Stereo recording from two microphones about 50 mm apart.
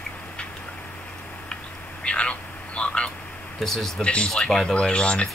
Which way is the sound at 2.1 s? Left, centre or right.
Left.